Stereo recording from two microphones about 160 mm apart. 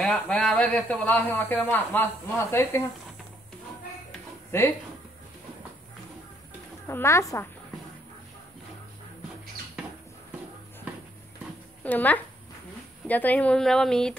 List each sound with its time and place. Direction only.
0.0 s speech: 5° left (ahead or behind)
4.5 s speech: 15° left (ahead or behind)
6.9 s speech: 15° left (ahead or behind)
11.8 s speech: 10° left (ahead or behind)